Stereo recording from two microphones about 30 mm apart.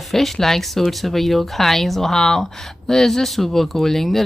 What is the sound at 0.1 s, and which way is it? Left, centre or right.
Speech, centre.